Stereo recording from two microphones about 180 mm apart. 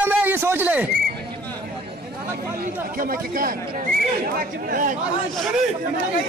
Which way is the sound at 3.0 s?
50° right (ahead or behind).